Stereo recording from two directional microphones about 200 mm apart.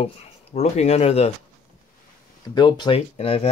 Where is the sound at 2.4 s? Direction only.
20° left (ahead or behind).